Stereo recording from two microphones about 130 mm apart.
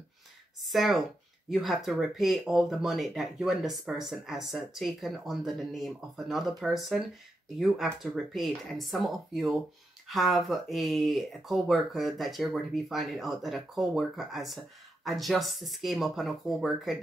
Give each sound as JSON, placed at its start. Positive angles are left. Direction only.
{"t": 0.6, "sound": "speech", "side_deg": 0}